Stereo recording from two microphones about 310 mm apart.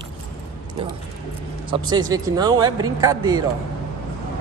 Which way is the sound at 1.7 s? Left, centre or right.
Centre.